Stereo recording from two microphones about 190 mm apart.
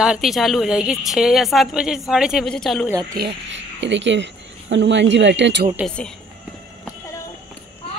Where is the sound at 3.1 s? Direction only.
65° right (ahead or behind).